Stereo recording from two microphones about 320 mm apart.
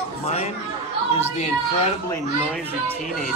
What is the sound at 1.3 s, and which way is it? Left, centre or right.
Speech, left.